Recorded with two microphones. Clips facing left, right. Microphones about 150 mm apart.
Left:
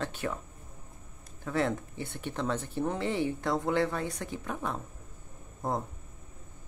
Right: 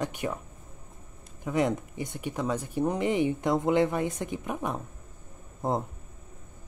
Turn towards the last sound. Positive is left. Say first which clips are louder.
# right 4 dB
turn(degrees=-20)  # may be behind; listen again after turning